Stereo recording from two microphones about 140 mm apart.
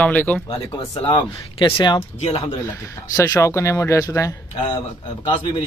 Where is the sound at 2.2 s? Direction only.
50° left (ahead or behind).